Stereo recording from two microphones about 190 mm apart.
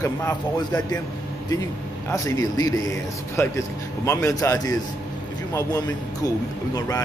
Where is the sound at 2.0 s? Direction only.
20° left (ahead or behind).